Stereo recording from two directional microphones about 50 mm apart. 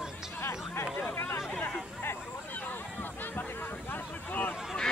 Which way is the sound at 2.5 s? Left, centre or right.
Left.